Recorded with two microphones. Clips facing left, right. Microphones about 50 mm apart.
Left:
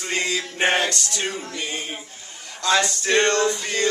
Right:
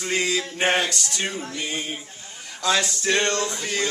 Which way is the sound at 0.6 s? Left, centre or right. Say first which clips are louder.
Left 2 dB; centre.